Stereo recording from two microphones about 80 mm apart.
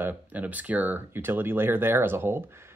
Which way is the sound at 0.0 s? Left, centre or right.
Centre.